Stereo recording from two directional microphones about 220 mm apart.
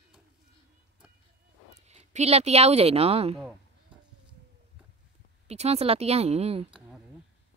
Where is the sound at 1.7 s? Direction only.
30° right (ahead or behind).